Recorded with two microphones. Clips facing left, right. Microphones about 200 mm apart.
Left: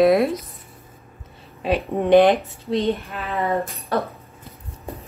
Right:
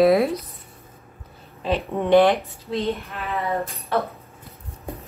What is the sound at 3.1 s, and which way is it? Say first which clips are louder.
Speech: left 1 dB; 30° left (ahead or behind).